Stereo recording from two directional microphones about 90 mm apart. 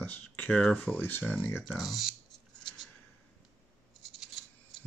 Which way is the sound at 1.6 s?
5° right (ahead or behind).